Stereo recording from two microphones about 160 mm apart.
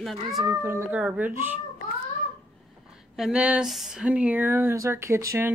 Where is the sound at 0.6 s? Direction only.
10° right (ahead or behind).